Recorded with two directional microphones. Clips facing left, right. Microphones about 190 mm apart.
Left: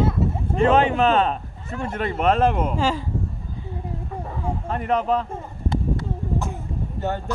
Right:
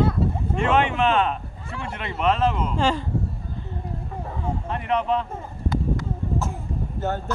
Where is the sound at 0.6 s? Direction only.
35° left (ahead or behind); by 2.7 s 55° left (ahead or behind).